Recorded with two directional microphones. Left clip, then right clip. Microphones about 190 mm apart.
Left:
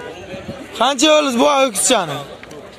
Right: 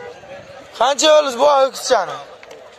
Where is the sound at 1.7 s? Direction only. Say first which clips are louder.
Even; 30° left (ahead or behind).